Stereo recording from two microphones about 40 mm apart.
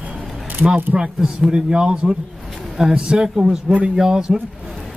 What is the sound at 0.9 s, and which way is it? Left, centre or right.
Speech, centre.